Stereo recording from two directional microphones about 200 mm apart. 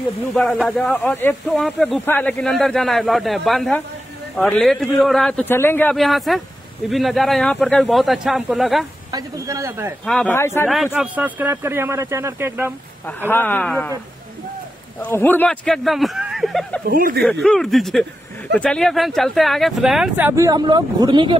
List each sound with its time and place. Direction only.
0.3 s speech: centre (ahead or behind)
9.1 s speech: 15° right (ahead or behind)
10.0 s speech: 5° left (ahead or behind)
10.7 s speech: centre (ahead or behind)
13.3 s speech: 10° left (ahead or behind)
15.0 s speech: 10° left (ahead or behind)
16.9 s speech: 45° right (ahead or behind)
17.2 s speech: centre (ahead or behind); by 21.4 s 25° right (ahead or behind)